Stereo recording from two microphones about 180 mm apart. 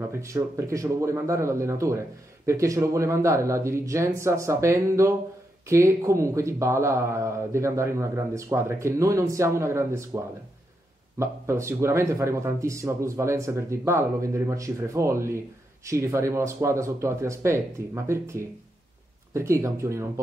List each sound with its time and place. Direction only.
0.1 s speech: 15° right (ahead or behind)